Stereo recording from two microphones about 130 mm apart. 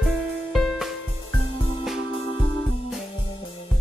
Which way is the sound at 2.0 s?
40° left (ahead or behind).